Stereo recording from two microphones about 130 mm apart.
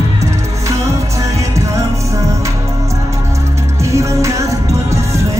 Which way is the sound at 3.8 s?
25° right (ahead or behind).